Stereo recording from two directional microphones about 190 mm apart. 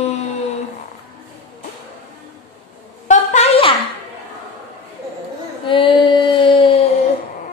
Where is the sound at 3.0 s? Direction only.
40° left (ahead or behind).